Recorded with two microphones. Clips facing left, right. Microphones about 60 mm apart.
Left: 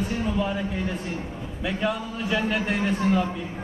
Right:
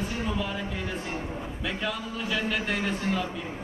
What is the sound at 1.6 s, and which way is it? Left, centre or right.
A man's voice, centre.